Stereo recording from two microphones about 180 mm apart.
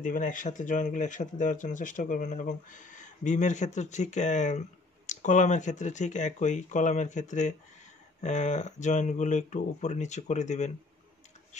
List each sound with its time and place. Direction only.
0.0 s speech: 45° left (ahead or behind)